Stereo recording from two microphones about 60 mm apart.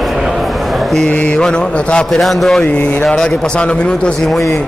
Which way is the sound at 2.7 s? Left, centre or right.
Left.